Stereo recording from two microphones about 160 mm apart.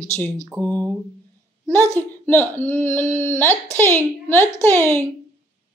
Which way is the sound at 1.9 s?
10° left (ahead or behind).